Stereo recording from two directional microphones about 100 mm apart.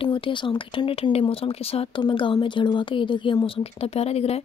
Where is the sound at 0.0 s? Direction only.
55° left (ahead or behind).